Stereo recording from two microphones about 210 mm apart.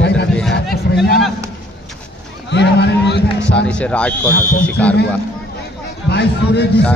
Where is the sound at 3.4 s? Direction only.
5° left (ahead or behind).